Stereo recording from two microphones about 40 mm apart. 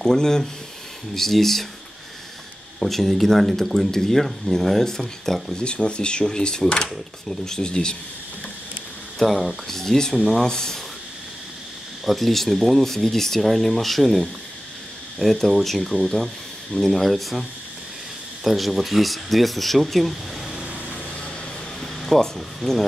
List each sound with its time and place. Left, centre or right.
0.0 s speech: centre
2.8 s speech: centre
5.6 s speech: left
9.2 s speech: centre
9.8 s speech: centre
12.1 s speech: centre
21.7 s speech: centre